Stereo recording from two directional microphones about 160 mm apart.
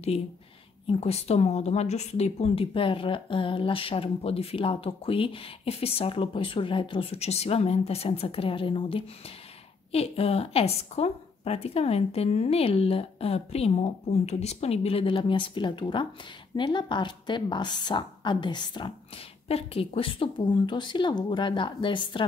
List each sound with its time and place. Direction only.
0.8 s a woman's voice: 40° left (ahead or behind)